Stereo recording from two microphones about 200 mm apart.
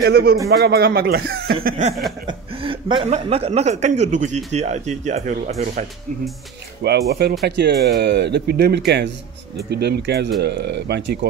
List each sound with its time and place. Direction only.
0.0 s speech: 50° right (ahead or behind)
2.2 s speech: 25° right (ahead or behind); by 5.9 s 40° right (ahead or behind)
6.8 s speech: 55° right (ahead or behind)